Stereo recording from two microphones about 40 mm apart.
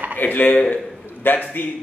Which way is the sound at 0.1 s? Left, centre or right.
Left.